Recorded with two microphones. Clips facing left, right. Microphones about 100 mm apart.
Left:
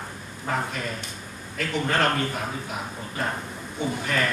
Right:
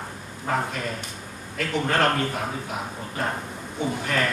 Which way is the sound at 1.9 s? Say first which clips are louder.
Right 1 dB; 35° right (ahead or behind).